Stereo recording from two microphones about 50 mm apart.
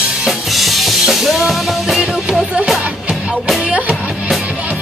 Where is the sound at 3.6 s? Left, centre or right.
Right.